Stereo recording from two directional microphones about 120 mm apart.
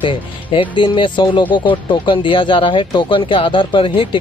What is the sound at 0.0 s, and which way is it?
Speech, 45° left (ahead or behind).